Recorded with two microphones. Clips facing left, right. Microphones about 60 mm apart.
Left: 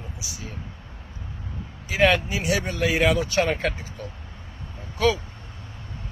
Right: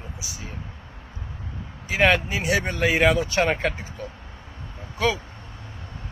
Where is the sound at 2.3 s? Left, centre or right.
Right.